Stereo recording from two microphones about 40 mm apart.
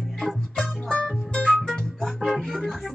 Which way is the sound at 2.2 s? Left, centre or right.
Centre.